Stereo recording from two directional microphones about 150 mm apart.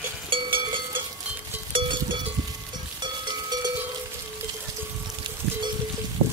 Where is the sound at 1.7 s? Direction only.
30° right (ahead or behind).